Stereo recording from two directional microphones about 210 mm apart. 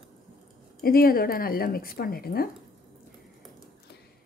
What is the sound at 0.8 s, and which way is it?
Speech, 45° left (ahead or behind).